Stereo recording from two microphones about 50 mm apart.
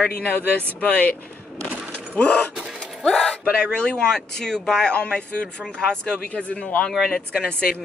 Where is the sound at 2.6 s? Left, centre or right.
Centre.